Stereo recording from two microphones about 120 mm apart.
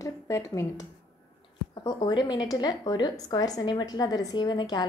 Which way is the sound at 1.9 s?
35° left (ahead or behind).